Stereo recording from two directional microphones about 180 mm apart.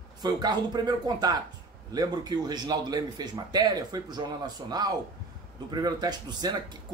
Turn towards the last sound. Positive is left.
turn(degrees=-25)  # may be behind; listen again after turning